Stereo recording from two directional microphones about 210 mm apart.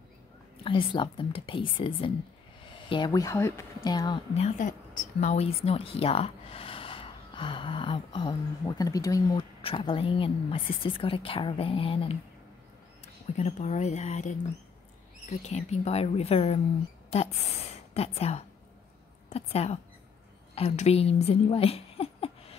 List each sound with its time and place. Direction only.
0.7 s a woman's voice: 25° left (ahead or behind)
4.3 s a woman's voice: 35° left (ahead or behind)
17.9 s a woman's voice: 30° left (ahead or behind)